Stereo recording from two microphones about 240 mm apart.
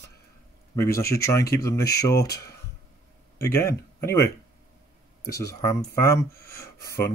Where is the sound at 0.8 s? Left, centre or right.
Centre.